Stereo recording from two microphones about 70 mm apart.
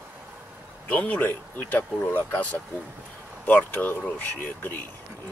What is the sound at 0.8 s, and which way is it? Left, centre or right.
Speech, left.